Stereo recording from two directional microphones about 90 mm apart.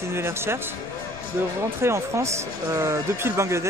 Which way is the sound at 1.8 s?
30° right (ahead or behind).